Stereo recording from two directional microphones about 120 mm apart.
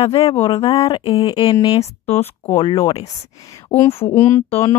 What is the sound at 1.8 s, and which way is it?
Speech, 60° left (ahead or behind).